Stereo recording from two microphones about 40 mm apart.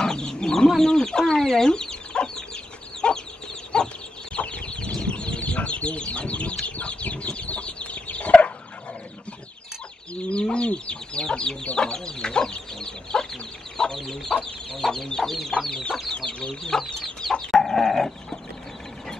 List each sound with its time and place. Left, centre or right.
0.0 s chicken: centre
4.4 s chicken: left
10.2 s chicken: left
15.2 s chicken: centre
15.7 s chicken: centre